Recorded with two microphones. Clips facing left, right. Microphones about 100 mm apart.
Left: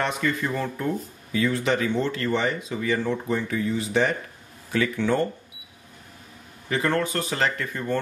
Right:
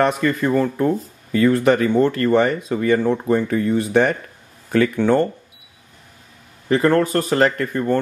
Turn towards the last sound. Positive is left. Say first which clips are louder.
# right 7 dB
turn(degrees=-45)  # may be behind; listen again after turning